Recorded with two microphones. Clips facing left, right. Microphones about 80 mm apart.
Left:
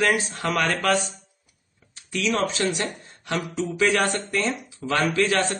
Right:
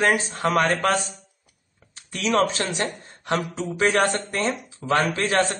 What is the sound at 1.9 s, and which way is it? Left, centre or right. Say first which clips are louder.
Speech: right 3 dB; right.